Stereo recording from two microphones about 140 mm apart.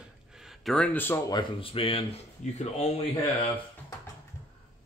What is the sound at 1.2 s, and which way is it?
Speech, 35° left (ahead or behind).